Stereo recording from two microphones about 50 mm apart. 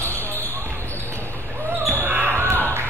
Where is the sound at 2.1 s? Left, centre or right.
Right.